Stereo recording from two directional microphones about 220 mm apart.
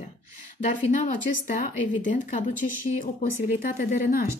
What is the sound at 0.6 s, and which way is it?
A woman's voice, 35° left (ahead or behind).